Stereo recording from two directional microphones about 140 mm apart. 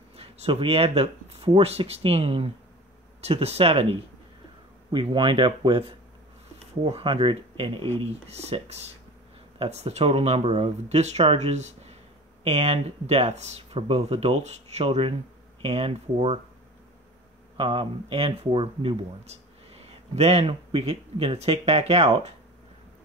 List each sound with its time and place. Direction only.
0.1 s speech: 45° right (ahead or behind)
17.6 s speech: 45° right (ahead or behind)